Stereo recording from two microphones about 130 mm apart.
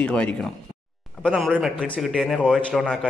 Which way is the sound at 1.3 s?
5° right (ahead or behind).